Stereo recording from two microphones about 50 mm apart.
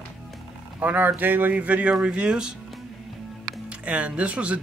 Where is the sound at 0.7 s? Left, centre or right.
Right.